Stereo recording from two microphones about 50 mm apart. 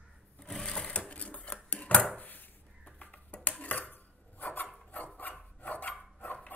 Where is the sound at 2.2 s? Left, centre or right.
Left.